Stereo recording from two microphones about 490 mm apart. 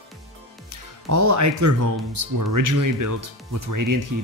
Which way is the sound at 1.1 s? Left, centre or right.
Right.